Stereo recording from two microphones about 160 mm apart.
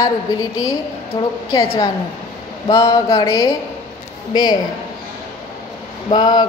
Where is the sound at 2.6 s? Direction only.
30° left (ahead or behind).